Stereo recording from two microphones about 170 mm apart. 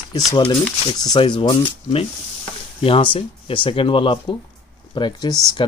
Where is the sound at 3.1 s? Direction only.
30° left (ahead or behind).